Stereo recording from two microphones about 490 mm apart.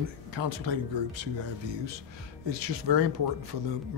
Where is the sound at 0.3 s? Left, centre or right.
Right.